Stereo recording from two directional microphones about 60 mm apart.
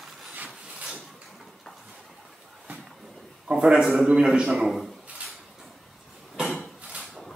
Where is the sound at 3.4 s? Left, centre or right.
Centre.